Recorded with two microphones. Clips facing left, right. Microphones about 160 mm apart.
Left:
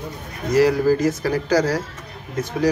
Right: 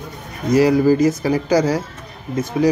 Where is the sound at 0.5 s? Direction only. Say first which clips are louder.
Right 3 dB; 15° right (ahead or behind).